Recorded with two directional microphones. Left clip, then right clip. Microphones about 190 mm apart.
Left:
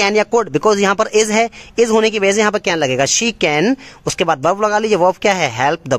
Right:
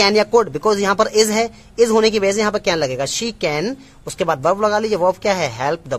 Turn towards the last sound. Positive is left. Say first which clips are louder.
# left 5 dB
turn(degrees=30)  # may be behind; listen again after turning